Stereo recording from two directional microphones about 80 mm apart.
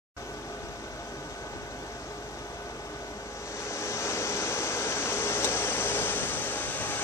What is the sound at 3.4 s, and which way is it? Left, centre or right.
Vehicle, left.